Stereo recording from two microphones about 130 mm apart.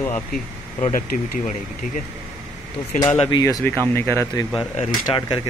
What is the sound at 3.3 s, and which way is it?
Speech, 30° left (ahead or behind).